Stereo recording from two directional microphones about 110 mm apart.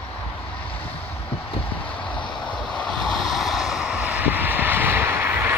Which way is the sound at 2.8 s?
5° left (ahead or behind).